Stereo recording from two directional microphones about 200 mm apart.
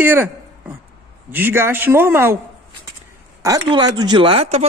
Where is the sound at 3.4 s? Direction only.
15° right (ahead or behind).